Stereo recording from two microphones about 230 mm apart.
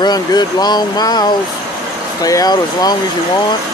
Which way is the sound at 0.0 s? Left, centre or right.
Centre.